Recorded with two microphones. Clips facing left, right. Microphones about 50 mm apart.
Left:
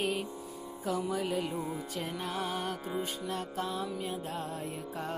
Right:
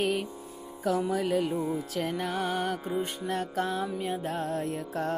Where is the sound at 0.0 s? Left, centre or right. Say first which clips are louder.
Right 4 dB; right.